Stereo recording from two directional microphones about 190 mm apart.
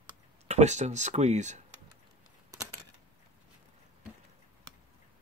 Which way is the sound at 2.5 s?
15° right (ahead or behind).